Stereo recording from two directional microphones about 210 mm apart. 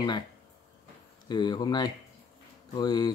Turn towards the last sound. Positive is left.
turn(degrees=20)  # may be behind; listen again after turning